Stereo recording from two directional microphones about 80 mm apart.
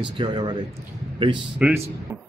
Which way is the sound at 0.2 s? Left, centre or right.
Right.